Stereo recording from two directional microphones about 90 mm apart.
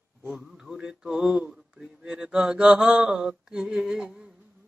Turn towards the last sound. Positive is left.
turn(degrees=-5)  # may be behind; listen again after turning